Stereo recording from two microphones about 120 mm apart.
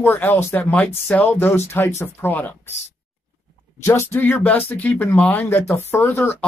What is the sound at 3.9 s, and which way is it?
Speech, 20° left (ahead or behind).